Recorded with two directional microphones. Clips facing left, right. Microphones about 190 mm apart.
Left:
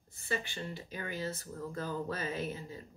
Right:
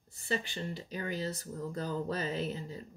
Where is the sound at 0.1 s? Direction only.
35° right (ahead or behind).